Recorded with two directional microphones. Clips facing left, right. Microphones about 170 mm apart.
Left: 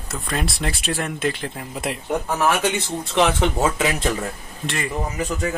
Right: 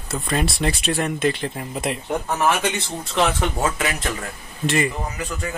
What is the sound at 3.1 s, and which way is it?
Speech, 15° left (ahead or behind).